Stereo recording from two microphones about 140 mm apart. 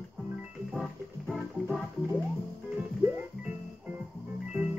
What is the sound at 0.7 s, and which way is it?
Music, centre (ahead or behind).